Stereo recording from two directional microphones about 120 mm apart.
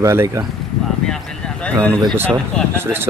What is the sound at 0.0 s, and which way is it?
Speech, 20° right (ahead or behind).